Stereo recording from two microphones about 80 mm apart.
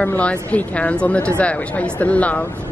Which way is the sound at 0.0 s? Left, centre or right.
Centre.